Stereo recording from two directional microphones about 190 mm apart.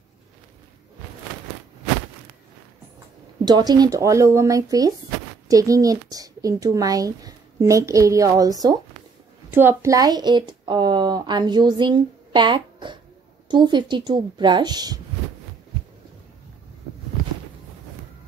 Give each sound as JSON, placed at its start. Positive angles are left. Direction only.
{"t": 3.4, "sound": "a woman's voice", "side_deg": -20}